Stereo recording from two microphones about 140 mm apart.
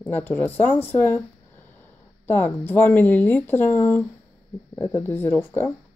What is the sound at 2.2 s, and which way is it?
Speech, 15° left (ahead or behind).